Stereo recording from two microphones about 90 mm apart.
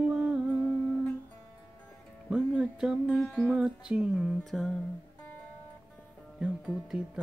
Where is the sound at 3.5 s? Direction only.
10° right (ahead or behind).